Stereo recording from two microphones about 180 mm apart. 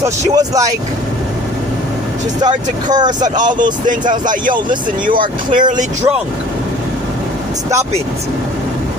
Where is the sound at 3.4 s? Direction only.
45° right (ahead or behind).